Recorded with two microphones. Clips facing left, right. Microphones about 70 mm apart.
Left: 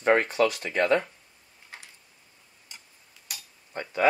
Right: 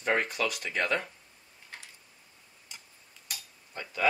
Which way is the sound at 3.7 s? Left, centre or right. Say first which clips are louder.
Left 5 dB; left.